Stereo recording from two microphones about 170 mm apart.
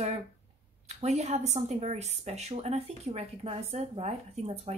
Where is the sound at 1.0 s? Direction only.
40° right (ahead or behind).